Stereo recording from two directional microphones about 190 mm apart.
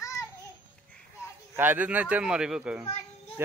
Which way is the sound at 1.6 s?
10° right (ahead or behind).